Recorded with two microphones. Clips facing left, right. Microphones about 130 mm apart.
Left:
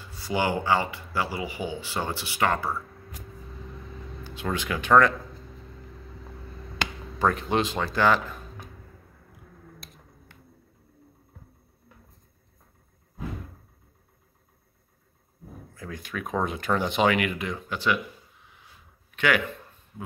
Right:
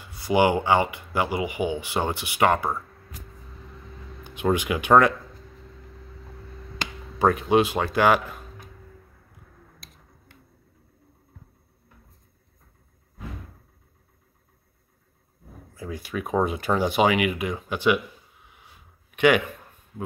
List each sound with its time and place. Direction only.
0.0 s speech: 15° right (ahead or behind)
4.2 s speech: 20° right (ahead or behind)
7.2 s speech: 10° right (ahead or behind)
15.7 s speech: 10° right (ahead or behind)
19.1 s a man's voice: 20° right (ahead or behind)